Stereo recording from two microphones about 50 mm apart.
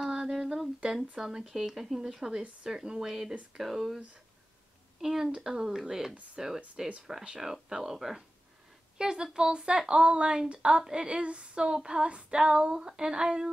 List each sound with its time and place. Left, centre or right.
0.0 s humming: centre
0.8 s female singing: centre
3.5 s speech: centre
5.0 s female singing: centre
10.5 s speech: right
10.8 s female singing: centre